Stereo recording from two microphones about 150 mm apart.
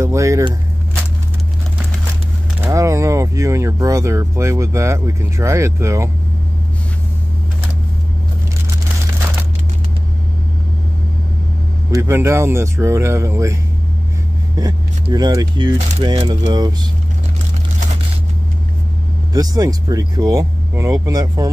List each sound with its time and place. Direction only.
0.0 s vehicle: 20° right (ahead or behind)
2.6 s speech: 20° right (ahead or behind)
11.9 s speech: 15° right (ahead or behind)
14.6 s speech: 30° right (ahead or behind)
19.3 s speech: 25° right (ahead or behind)